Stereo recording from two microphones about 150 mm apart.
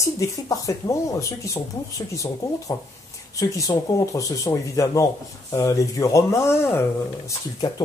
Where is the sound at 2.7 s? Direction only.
15° left (ahead or behind).